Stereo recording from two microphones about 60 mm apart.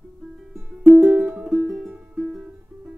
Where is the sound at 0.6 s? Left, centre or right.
Right.